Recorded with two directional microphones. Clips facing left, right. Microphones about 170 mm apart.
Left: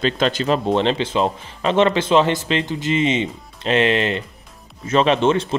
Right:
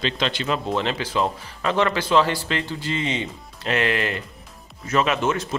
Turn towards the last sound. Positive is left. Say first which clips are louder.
# left 6 dB
turn(degrees=25)  # may be behind; listen again after turning